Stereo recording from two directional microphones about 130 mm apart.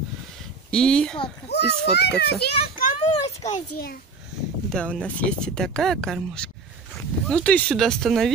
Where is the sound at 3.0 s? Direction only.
55° left (ahead or behind).